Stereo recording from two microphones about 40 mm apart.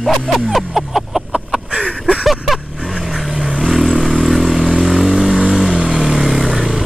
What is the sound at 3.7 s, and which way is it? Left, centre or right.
Vehicle, centre.